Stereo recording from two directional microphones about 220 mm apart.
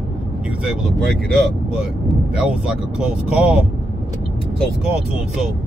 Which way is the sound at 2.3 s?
5° right (ahead or behind).